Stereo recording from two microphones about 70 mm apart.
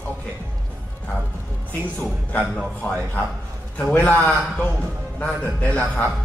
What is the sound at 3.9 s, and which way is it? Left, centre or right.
A man's voice, left.